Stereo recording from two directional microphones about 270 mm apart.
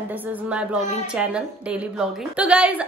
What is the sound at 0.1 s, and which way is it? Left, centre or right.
A woman's voice, centre.